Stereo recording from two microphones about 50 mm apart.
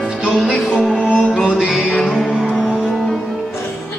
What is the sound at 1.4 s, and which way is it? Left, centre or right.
Music, centre.